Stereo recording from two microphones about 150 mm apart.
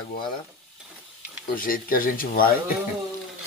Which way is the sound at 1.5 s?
70° left (ahead or behind).